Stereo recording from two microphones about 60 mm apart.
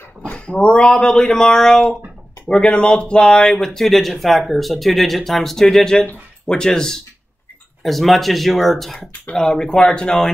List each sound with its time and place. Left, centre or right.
0.2 s a sound: centre
0.7 s speech: centre
3.8 s speech: centre